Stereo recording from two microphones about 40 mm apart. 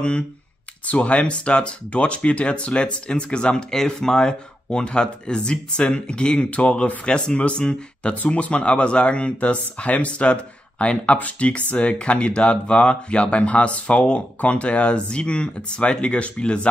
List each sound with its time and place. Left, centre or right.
0.8 s speech: left
3.7 s speech: centre